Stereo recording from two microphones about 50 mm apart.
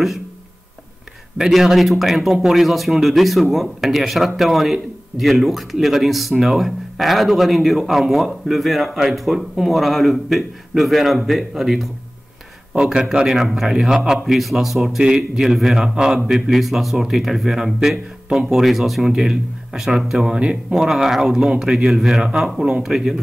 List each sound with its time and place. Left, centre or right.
1.4 s speech: centre
12.7 s a man's voice: centre
13.3 s a man's voice: centre